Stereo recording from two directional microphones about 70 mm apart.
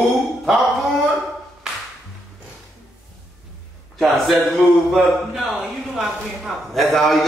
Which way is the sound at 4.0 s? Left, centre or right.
Centre.